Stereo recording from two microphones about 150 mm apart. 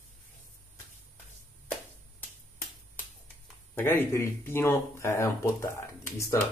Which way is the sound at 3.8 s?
15° left (ahead or behind).